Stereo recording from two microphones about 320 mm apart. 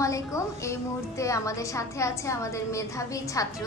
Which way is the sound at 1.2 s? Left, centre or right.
Centre.